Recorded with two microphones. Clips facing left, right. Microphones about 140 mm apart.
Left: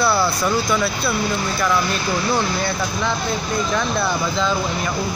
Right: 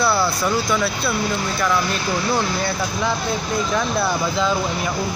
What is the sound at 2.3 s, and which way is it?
Speech, 5° right (ahead or behind).